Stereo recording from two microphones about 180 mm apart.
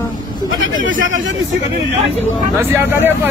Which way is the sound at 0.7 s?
90° right.